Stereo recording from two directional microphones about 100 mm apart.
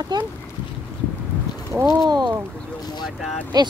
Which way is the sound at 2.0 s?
45° right (ahead or behind).